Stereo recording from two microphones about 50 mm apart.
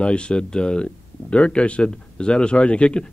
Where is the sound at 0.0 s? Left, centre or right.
Left.